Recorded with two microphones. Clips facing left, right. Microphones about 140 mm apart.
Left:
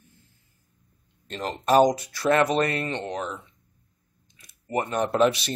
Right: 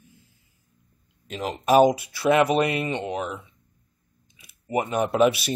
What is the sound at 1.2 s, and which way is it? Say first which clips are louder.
Speech: right 1 dB; 5° right (ahead or behind).